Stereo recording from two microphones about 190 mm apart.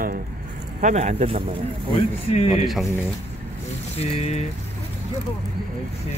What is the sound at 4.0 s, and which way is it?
Speech, 35° left (ahead or behind).